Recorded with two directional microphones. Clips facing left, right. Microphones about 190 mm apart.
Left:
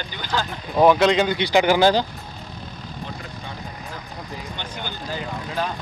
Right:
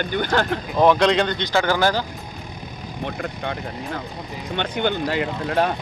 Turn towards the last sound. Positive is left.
turn(degrees=-70)  # may be behind; listen again after turning